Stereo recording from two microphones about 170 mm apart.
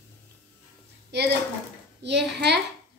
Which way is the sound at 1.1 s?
80° right.